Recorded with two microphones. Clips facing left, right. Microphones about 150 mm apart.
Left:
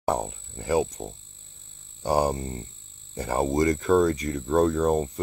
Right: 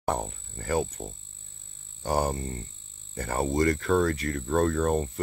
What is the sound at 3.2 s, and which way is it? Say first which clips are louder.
Cricket: left 3 dB; 15° left (ahead or behind).